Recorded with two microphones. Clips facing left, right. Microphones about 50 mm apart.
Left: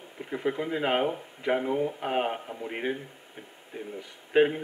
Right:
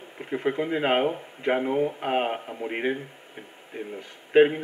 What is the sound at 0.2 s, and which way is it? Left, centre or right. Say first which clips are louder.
A man's voice: right 3 dB; right.